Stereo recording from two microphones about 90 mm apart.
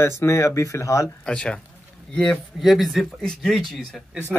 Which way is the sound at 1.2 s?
10° left (ahead or behind).